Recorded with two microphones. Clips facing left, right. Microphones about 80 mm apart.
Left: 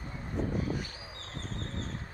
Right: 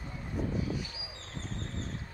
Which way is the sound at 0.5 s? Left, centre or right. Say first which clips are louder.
Left 1 dB; left.